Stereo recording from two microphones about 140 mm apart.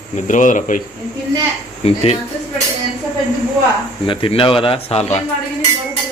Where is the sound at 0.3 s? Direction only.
65° left (ahead or behind).